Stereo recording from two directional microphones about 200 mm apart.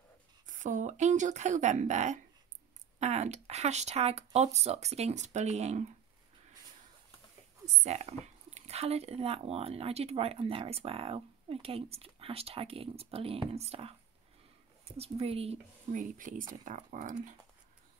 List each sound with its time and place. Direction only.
0.5 s speech: 40° right (ahead or behind)
7.6 s speech: 35° right (ahead or behind)
15.0 s speech: 30° right (ahead or behind)
15.9 s speech: 40° right (ahead or behind)